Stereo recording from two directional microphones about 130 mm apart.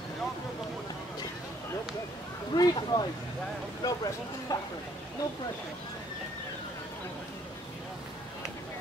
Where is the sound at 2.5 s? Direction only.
30° left (ahead or behind).